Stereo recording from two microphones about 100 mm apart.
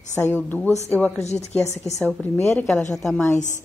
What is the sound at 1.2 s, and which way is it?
Speech, 90° left.